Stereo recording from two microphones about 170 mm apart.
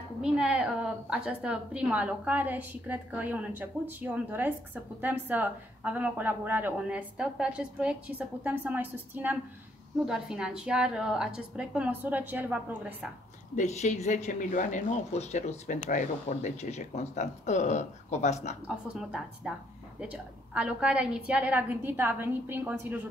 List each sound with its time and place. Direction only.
0.2 s a woman's voice: 5° right (ahead or behind)
13.6 s speech: 45° left (ahead or behind)
18.7 s a woman's voice: 5° right (ahead or behind)